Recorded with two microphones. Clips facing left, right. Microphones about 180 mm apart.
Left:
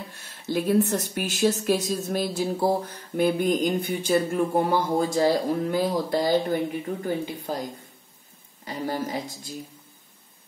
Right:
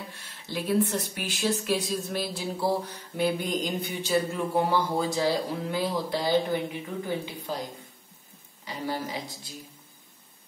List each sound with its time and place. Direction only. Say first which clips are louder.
0.2 s speech: left 8 dB; 45° left (ahead or behind)
8.6 s speech: left 3 dB; 45° left (ahead or behind)